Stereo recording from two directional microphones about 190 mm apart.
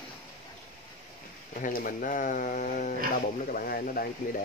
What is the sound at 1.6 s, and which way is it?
Speech, 45° left (ahead or behind).